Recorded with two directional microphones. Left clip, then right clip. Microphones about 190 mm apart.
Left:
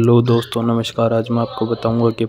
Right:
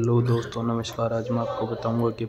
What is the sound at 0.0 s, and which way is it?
Speech, 40° left (ahead or behind).